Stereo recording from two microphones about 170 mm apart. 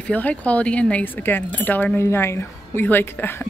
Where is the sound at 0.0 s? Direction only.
10° left (ahead or behind).